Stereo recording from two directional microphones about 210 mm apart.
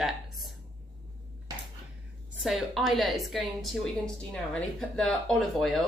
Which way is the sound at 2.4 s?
Centre (ahead or behind).